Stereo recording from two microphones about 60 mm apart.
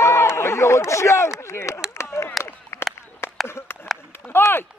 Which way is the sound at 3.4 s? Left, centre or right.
Left.